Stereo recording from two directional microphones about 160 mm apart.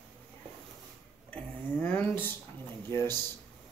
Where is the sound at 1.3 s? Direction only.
10° left (ahead or behind).